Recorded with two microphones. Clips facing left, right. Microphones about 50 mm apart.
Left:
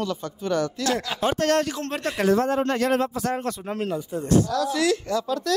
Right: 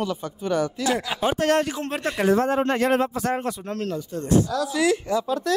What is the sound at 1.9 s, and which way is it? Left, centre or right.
Speech, centre.